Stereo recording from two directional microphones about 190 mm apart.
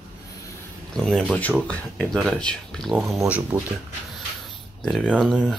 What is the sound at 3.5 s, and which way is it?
Speech, 10° right (ahead or behind).